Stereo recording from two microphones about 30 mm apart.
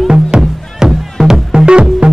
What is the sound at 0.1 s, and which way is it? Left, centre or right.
Music, right.